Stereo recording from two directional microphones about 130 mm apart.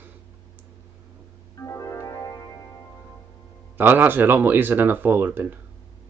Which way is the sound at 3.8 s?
15° right (ahead or behind).